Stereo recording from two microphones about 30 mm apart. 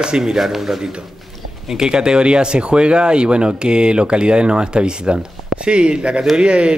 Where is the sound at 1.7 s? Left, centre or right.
Right.